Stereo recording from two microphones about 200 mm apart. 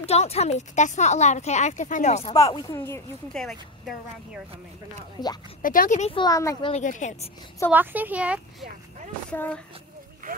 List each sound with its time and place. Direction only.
0.0 s a woman's voice: 30° left (ahead or behind)
2.3 s speech: 15° left (ahead or behind)
3.3 s a woman's voice: centre (ahead or behind)
5.6 s a woman's voice: 45° left (ahead or behind)
6.1 s speech: 20° left (ahead or behind)
6.7 s a woman's voice: 40° left (ahead or behind)
7.7 s a woman's voice: 10° right (ahead or behind)
9.3 s speech: 5° left (ahead or behind)